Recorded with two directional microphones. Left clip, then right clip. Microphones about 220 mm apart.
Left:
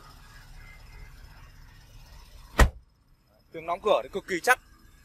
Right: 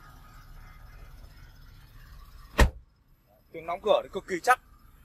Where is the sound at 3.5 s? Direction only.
25° left (ahead or behind).